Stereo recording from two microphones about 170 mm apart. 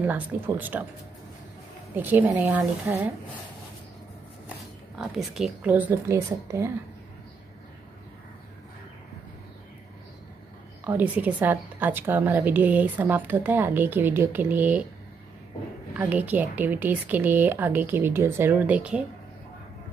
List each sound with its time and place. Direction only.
0.0 s a woman's voice: 10° right (ahead or behind)
2.0 s a woman's voice: 10° right (ahead or behind)
4.9 s a woman's voice: centre (ahead or behind)
10.8 s a woman's voice: 10° right (ahead or behind)
15.9 s a woman's voice: 10° right (ahead or behind)